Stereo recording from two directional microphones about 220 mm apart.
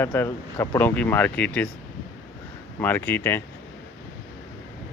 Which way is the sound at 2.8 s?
10° left (ahead or behind).